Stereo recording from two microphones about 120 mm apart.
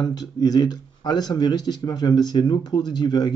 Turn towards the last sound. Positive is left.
turn(degrees=35)  # may be behind; listen again after turning